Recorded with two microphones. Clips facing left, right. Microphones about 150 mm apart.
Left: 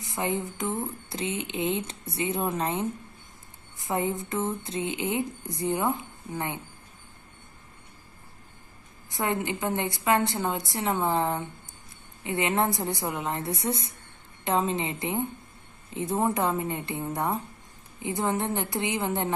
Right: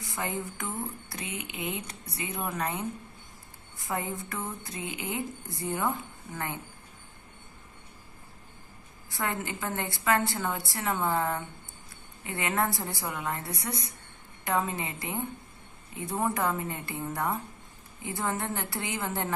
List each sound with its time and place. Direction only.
0.0 s speech: 20° left (ahead or behind)
9.1 s speech: 20° left (ahead or behind)